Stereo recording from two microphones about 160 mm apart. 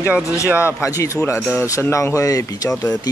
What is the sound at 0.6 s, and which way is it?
Speech, 20° left (ahead or behind).